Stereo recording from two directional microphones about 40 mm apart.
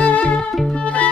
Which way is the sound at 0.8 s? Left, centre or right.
Left.